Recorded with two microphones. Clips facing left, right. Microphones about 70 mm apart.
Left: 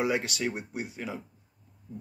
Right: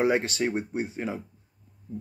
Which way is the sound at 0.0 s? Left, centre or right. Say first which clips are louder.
Right 4 dB; right.